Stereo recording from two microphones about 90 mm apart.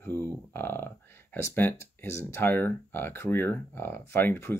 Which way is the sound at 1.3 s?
25° left (ahead or behind).